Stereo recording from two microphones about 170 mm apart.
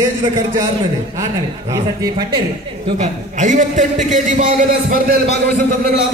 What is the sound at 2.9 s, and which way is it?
A man's voice, 45° right (ahead or behind).